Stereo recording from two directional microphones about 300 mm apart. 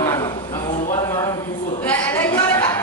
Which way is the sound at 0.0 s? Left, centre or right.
Centre.